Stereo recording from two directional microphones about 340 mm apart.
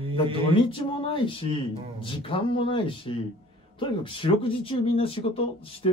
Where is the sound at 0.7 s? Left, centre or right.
Centre.